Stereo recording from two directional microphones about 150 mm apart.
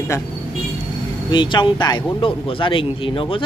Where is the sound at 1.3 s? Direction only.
30° left (ahead or behind).